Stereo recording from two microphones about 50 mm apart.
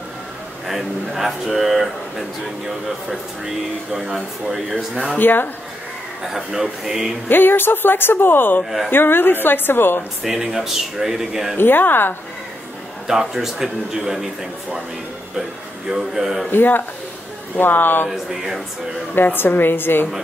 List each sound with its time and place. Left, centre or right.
0.7 s speech: centre
4.7 s speech: centre
5.2 s speech: left
6.2 s a man's voice: centre
7.2 s a woman's voice: left
8.6 s speech: centre
8.9 s a woman's voice: left
10.2 s a man's voice: centre
11.5 s a woman's voice: left
13.0 s a man's voice: centre
15.9 s a man's voice: centre
16.4 s a woman's voice: left
18.1 s speech: centre
19.3 s a woman's voice: left